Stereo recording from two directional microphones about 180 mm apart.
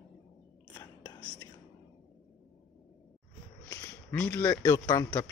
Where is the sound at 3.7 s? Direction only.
15° left (ahead or behind).